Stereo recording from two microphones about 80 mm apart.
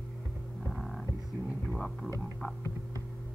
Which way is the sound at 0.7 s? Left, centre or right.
Centre.